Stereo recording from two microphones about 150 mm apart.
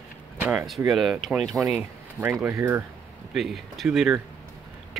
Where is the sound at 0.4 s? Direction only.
10° right (ahead or behind).